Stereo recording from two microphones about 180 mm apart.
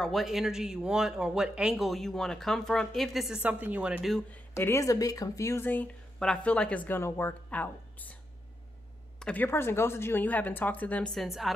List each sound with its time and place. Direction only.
0.0 s speech: centre (ahead or behind)
4.6 s a woman's voice: 15° left (ahead or behind)
9.2 s a woman's voice: 10° left (ahead or behind)